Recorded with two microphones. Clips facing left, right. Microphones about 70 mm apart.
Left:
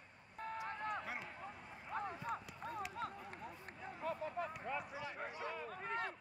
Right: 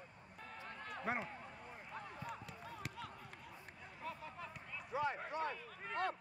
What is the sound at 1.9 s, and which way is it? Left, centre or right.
Basketball bounce, left.